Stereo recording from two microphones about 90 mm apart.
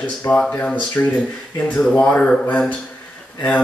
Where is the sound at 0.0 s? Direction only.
15° left (ahead or behind).